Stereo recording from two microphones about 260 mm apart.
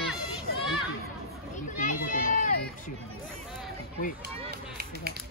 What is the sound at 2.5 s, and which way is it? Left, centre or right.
Speech, left.